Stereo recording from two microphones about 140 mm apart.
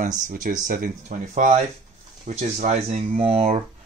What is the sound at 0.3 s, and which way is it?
Speech, 70° right (ahead or behind).